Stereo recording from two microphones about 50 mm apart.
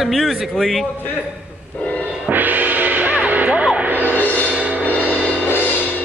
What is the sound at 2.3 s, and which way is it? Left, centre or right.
Music, right.